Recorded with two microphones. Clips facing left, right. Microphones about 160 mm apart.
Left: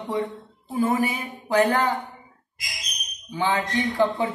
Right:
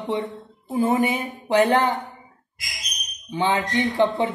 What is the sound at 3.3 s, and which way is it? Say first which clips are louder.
Speech: right 2 dB; 20° right (ahead or behind).